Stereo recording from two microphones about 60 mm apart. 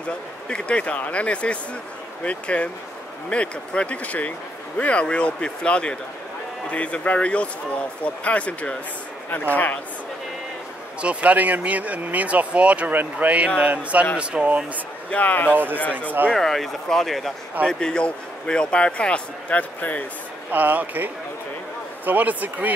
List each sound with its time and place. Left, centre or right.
0.5 s a man's voice: centre
11.0 s speech: right
15.0 s speech: left
15.5 s speech: right
15.8 s speech: left
16.3 s a man's voice: centre; by 20.1 s left
20.5 s speech: right